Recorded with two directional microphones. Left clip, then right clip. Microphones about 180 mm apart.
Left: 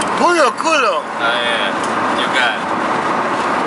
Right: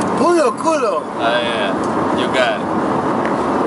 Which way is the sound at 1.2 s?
10° right (ahead or behind).